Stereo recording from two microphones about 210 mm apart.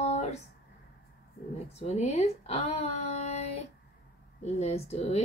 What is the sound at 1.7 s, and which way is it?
Speech, 30° left (ahead or behind).